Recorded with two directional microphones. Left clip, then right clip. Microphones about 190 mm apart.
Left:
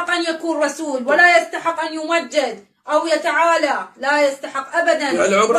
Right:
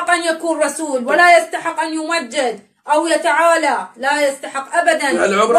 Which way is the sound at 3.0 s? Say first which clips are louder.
Right 2 dB; 40° right (ahead or behind).